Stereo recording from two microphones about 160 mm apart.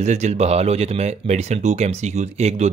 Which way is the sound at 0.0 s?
45° right (ahead or behind).